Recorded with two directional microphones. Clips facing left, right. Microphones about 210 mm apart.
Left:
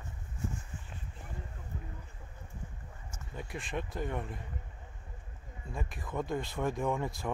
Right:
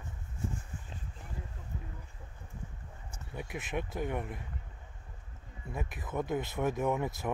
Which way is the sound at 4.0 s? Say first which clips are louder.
Right 1 dB; 10° right (ahead or behind).